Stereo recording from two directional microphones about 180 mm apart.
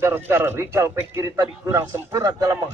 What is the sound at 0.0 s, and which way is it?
A man's voice, 15° right (ahead or behind).